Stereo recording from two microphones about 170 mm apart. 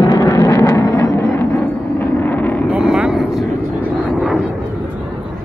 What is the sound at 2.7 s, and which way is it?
Vehicle, 5° right (ahead or behind).